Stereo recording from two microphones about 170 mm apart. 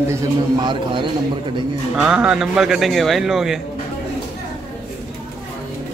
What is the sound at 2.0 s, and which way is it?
A man's voice, 5° right (ahead or behind).